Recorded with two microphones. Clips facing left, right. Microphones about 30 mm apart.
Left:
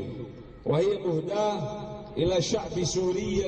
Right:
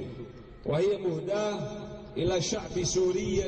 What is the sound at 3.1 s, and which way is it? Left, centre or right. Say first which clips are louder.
Music: left 1 dB; left.